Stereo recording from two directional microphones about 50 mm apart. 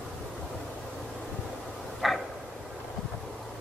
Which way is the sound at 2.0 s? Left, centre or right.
Centre.